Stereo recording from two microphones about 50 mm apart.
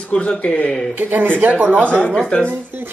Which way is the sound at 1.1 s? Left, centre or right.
Right.